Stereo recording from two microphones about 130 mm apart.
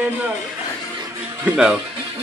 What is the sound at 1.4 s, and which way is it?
Speech, 5° right (ahead or behind).